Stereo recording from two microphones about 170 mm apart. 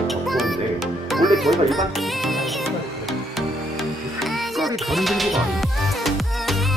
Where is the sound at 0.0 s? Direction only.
Centre (ahead or behind).